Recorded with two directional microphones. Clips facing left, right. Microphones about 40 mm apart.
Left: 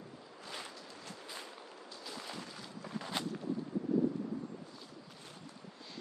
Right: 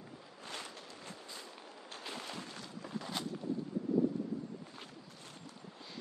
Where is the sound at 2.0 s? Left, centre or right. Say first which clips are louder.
Right 1 dB; right.